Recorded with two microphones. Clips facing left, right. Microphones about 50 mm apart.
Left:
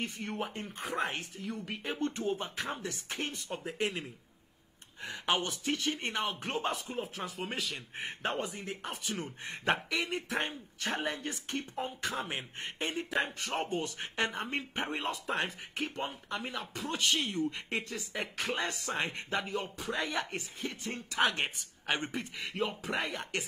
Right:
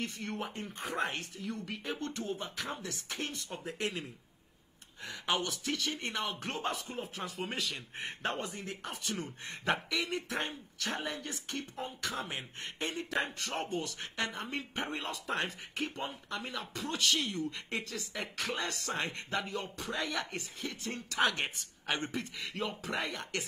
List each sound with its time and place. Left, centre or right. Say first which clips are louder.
0.0 s speech: left 1 dB; centre
0.4 s speech: left 2 dB; centre
1.7 s speech: left 3 dB; centre
5.0 s speech: left 2 dB; left
6.1 s speech: left 2 dB; centre
10.0 s speech: left 2 dB; left
14.8 s speech: left 3 dB; centre
15.2 s speech: left 1 dB; centre